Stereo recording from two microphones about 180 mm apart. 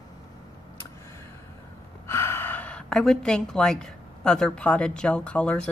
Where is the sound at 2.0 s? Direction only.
15° left (ahead or behind).